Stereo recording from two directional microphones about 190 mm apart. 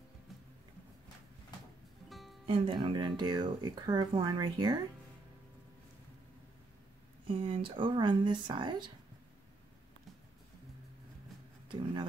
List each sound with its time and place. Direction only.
2.0 s music: centre (ahead or behind)
2.4 s speech: 30° right (ahead or behind)
7.2 s speech: 30° right (ahead or behind)
11.7 s speech: 25° right (ahead or behind)